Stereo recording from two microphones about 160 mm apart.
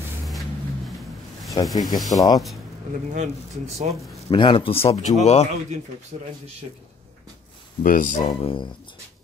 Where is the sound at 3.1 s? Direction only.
50° right (ahead or behind).